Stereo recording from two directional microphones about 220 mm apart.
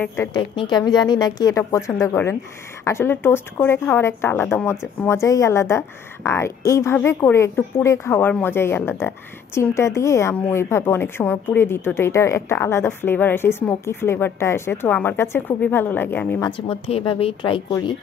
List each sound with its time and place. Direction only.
0.0 s speech: 10° left (ahead or behind)
16.4 s a woman's voice: 20° left (ahead or behind)